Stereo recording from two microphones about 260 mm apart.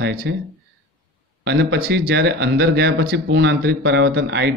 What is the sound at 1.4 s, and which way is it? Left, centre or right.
Speech, right.